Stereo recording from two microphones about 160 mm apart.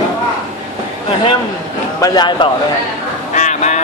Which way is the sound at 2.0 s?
30° left (ahead or behind).